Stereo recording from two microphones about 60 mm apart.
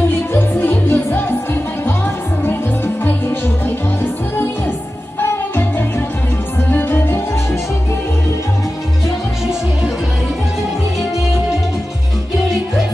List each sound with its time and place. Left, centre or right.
0.1 s music: left
3.6 s music: left